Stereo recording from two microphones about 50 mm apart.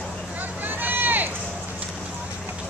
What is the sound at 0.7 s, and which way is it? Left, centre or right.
Run, right.